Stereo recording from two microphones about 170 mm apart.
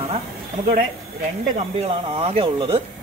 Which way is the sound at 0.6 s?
50° right (ahead or behind).